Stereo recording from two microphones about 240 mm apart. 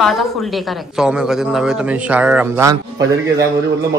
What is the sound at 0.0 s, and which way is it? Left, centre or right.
Speech, centre.